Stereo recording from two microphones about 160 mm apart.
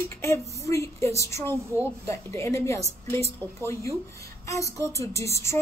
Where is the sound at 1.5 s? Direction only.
20° right (ahead or behind).